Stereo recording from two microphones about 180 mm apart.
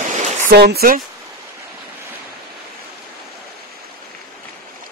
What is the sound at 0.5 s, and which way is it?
Speech, 60° right (ahead or behind).